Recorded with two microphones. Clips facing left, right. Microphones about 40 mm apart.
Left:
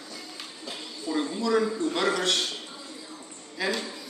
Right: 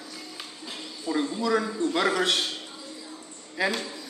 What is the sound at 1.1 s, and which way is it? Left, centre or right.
A man's voice, centre.